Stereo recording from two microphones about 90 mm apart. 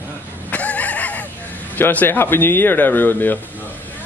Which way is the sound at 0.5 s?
15° left (ahead or behind).